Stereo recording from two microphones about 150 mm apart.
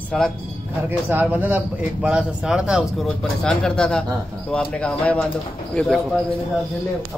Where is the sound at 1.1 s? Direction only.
10° right (ahead or behind).